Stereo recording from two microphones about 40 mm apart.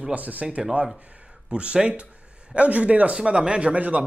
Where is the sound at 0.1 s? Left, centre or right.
Right.